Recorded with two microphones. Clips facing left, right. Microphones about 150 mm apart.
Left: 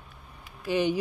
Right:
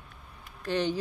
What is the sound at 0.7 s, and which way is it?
Speech, 10° left (ahead or behind).